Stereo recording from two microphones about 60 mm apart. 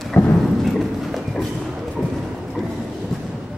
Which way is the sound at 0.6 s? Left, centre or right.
Centre.